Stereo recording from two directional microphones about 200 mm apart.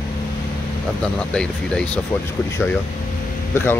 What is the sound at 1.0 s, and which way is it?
Speech, 5° left (ahead or behind).